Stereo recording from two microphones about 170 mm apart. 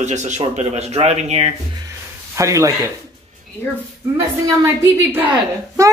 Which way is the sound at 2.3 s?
20° right (ahead or behind).